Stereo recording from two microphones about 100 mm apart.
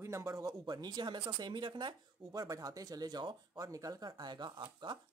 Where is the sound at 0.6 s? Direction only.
45° right (ahead or behind).